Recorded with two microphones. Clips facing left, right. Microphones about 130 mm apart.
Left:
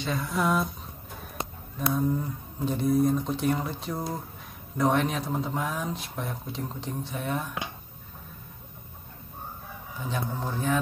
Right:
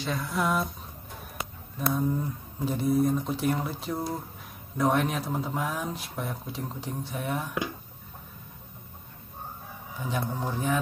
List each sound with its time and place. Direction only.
0.0 s speech: centre (ahead or behind)
2.0 s speech: centre (ahead or behind)
10.0 s a man's voice: 10° right (ahead or behind)